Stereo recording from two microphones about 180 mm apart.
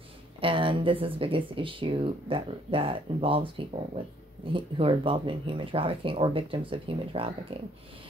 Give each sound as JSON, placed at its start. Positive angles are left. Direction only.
{"t": 0.4, "sound": "speech", "side_deg": -30}